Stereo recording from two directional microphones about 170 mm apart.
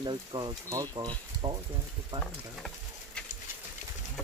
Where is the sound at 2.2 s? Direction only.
Centre (ahead or behind).